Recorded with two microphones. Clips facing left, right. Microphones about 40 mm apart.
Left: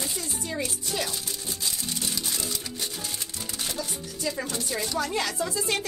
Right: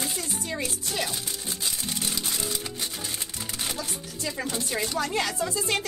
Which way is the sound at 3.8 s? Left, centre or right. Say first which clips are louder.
Left 1 dB; centre.